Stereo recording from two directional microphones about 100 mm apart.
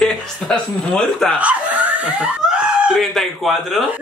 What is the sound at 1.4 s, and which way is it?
Dog, 15° right (ahead or behind).